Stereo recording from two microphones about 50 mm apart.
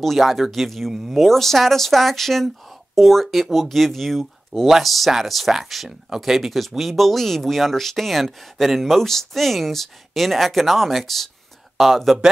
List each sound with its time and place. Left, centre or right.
0.0 s speech: centre